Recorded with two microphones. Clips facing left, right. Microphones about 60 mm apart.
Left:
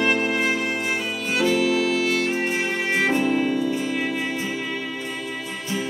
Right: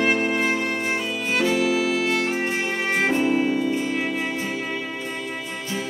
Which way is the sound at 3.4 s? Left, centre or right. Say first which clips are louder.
Even; right.